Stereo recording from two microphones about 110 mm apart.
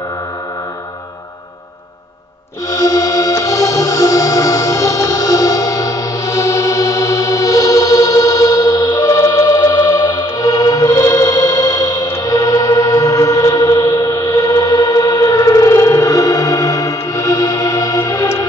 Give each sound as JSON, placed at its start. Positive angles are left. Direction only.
{"t": 2.7, "sound": "music", "side_deg": 35}